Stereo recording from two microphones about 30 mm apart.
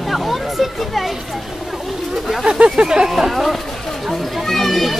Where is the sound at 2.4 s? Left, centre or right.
Right.